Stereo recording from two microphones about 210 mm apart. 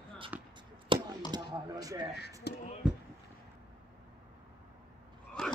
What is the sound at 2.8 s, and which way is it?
Basketball bounce, 5° right (ahead or behind).